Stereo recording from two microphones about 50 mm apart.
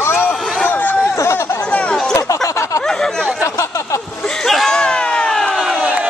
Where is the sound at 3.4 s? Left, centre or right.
Left.